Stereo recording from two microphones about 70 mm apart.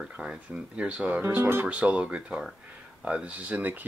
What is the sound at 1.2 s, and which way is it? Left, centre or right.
Speech, right.